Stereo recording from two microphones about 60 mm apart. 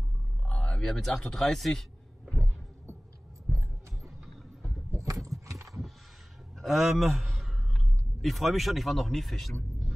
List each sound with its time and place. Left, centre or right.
0.5 s speech: centre
2.3 s heart sounds: centre
4.9 s a sound: right
6.6 s a man's voice: centre